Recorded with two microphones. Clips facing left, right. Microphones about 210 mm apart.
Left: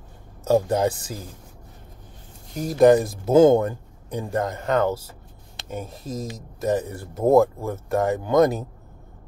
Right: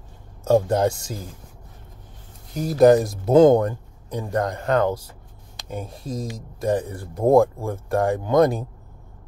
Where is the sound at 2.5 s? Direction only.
5° right (ahead or behind).